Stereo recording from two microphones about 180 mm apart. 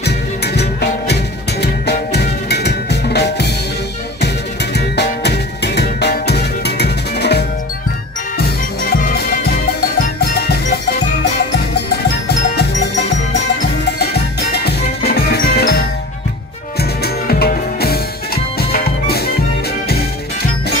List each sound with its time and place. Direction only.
0.6 s music: 70° left (ahead or behind)
4.7 s music: 65° left (ahead or behind)
8.9 s music: 55° left (ahead or behind)
13.9 s music: 65° left (ahead or behind)
17.0 s music: 60° left (ahead or behind)